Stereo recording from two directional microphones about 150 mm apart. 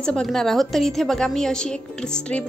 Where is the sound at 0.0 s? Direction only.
5° left (ahead or behind).